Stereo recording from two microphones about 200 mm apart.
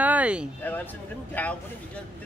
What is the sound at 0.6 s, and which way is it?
Speech, 10° left (ahead or behind).